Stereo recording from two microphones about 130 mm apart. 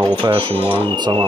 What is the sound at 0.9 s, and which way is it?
Speech, 35° right (ahead or behind).